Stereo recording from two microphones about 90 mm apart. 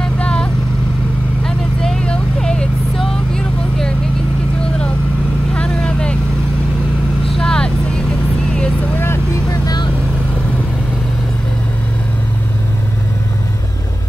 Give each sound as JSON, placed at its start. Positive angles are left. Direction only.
{"t": 0.0, "sound": "vehicle", "side_deg": 10}
{"t": 5.5, "sound": "vehicle", "side_deg": 10}
{"t": 7.3, "sound": "vehicle", "side_deg": 10}
{"t": 9.5, "sound": "vehicle", "side_deg": 45}